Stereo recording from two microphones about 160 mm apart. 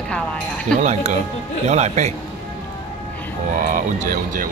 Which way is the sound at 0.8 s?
45° right (ahead or behind).